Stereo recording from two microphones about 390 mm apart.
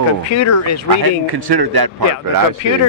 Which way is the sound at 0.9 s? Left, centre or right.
Right.